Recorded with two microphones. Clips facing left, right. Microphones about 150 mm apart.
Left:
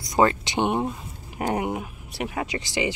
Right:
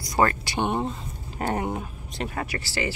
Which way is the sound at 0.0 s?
20° left (ahead or behind).